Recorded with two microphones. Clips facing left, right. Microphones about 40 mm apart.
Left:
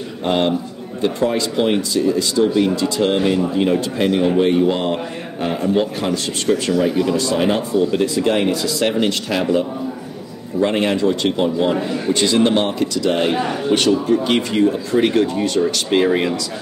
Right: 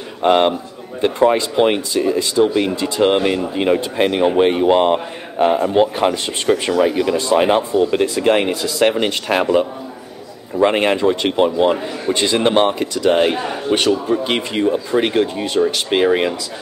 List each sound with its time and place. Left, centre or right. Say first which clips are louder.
0.2 s a man's voice: right 4 dB; right
13.4 s speech: left 1 dB; centre